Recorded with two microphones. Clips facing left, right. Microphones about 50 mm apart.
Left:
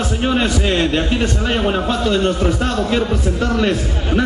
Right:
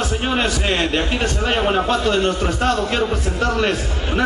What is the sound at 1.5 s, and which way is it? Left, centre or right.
Speech, centre.